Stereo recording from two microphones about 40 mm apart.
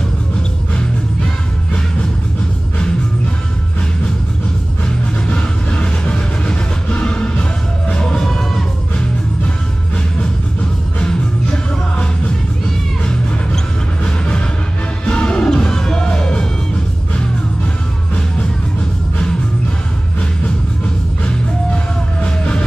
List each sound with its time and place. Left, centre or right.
0.4 s music: left
4.8 s vehicle: left
7.9 s music: centre
11.0 s music: left
22.2 s music: left